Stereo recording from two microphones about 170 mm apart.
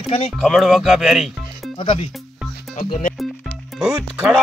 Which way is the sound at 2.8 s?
50° left (ahead or behind).